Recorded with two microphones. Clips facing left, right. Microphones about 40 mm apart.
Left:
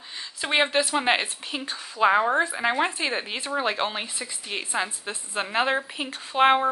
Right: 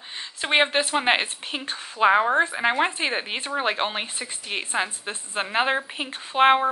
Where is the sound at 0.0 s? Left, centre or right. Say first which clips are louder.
Right 1 dB; right.